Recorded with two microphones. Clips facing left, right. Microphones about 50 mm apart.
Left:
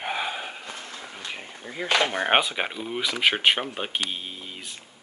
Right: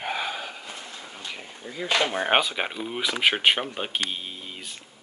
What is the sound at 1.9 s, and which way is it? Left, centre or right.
Speech, left.